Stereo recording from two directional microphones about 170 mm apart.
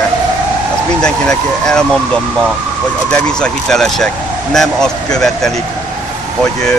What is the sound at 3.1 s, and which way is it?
Speech, 5° left (ahead or behind).